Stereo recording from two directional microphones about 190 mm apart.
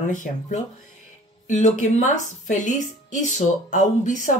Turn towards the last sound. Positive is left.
turn(degrees=40)  # may be behind; listen again after turning